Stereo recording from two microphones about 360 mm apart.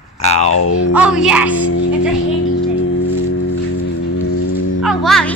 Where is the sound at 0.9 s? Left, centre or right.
Centre.